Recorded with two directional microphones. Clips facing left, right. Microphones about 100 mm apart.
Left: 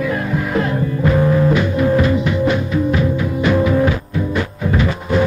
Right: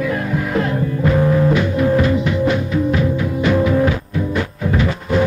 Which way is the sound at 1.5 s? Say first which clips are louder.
Even; 15° left (ahead or behind).